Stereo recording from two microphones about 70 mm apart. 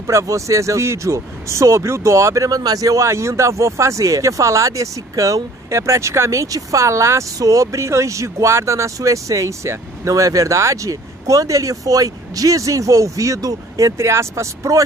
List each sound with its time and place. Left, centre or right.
0.0 s speech: right